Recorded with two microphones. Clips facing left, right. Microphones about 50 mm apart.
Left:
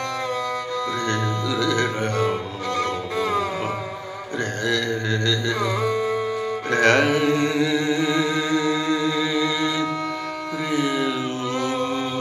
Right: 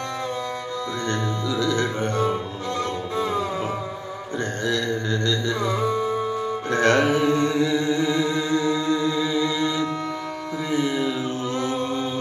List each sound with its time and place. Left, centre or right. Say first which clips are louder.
1.8 s music: left 1 dB; left
4.7 s music: left 1 dB; right
6.7 s music: left 1 dB; left